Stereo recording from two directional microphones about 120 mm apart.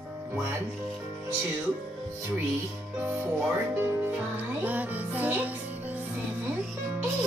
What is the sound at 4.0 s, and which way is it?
Music, 15° right (ahead or behind).